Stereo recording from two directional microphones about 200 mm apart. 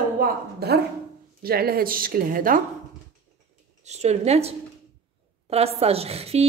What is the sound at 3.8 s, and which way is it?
A woman's voice, 35° right (ahead or behind).